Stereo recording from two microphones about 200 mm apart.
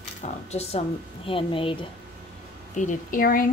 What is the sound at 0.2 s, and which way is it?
Speech, 30° left (ahead or behind).